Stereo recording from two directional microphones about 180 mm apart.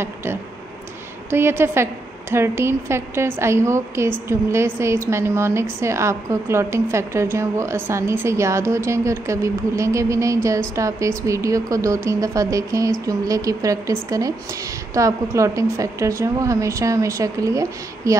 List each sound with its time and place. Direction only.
0.0 s a woman's voice: 15° right (ahead or behind)